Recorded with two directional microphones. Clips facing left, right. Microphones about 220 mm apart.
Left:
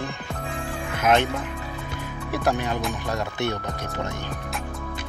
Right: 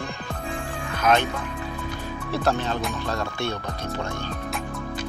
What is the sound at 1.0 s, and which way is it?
Speech, 25° left (ahead or behind).